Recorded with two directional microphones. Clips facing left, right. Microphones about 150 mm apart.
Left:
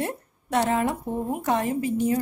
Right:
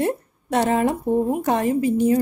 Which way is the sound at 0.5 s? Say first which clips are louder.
Right 4 dB; 30° right (ahead or behind).